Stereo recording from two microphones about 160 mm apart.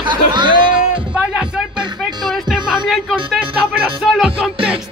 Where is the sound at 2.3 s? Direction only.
Centre (ahead or behind).